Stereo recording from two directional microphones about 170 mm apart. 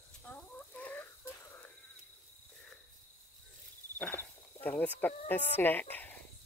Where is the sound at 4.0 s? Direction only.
10° left (ahead or behind).